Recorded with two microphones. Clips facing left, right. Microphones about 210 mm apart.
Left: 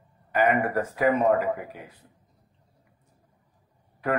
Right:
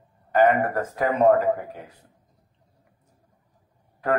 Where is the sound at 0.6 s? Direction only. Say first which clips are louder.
Left 1 dB; 45° right (ahead or behind).